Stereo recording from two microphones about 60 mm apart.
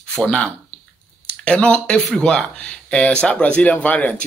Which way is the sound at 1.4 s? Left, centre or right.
Centre.